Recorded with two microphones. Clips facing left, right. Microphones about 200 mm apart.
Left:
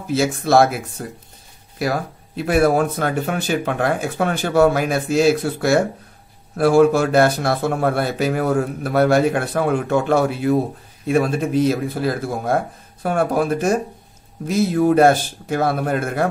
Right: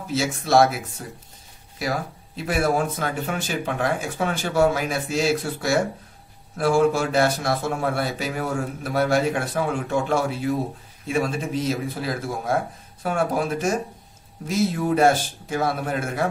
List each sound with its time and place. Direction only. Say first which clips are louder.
0.1 s speech: left 4 dB; 60° left (ahead or behind)